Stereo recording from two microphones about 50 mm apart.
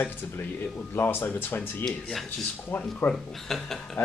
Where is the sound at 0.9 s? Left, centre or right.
Left.